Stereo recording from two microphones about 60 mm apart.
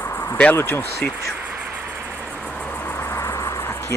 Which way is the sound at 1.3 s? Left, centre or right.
Right.